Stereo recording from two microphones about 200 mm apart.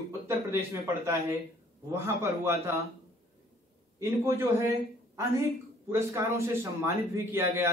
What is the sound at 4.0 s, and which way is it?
Speech, 15° right (ahead or behind).